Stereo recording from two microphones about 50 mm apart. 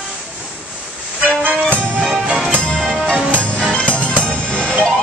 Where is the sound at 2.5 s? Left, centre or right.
Left.